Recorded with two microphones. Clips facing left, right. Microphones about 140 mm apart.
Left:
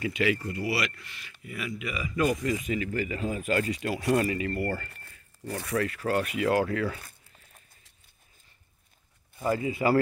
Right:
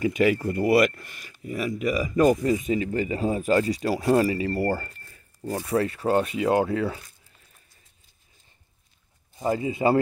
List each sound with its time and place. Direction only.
0.1 s speech: 45° right (ahead or behind); by 7.0 s 25° right (ahead or behind)
9.4 s speech: 25° right (ahead or behind)